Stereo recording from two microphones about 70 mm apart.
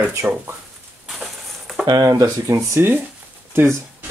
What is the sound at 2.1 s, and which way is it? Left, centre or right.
Speech, right.